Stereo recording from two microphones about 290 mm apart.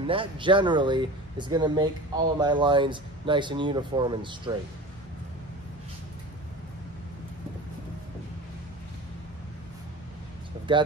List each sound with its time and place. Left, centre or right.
0.0 s speech: centre